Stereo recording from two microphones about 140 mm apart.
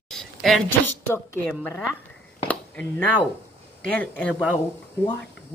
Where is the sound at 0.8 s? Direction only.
15° left (ahead or behind).